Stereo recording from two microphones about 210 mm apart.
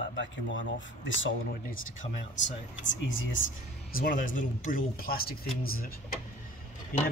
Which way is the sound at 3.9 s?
40° left (ahead or behind).